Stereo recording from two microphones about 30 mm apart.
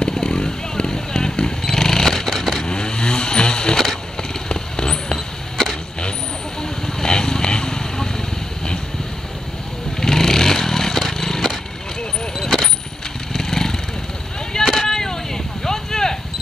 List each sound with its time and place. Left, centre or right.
0.0 s vehicle: left
1.6 s motorcycle: centre
2.6 s vehicle: left
3.7 s a sound: centre
4.5 s vehicle: left
6.6 s vehicle: left
9.9 s vehicle: centre
14.7 s artillery fire: centre